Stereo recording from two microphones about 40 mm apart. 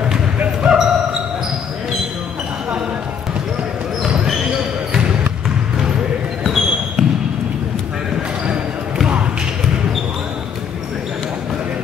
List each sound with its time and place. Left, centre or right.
0.6 s basketball bounce: centre
6.4 s basketball bounce: centre